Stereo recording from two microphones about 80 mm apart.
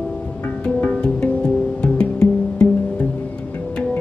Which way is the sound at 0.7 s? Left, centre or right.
Centre.